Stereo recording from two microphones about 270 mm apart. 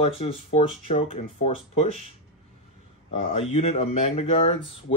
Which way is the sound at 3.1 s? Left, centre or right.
Left.